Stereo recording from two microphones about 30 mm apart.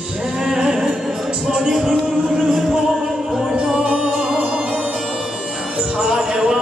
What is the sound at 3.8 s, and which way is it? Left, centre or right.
Music, right.